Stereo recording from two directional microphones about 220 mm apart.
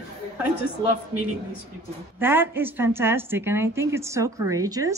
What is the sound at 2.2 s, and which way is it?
Speech, 10° right (ahead or behind).